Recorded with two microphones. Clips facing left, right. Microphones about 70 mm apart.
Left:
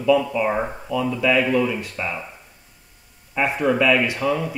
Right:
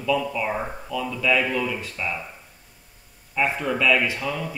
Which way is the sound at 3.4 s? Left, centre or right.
Centre.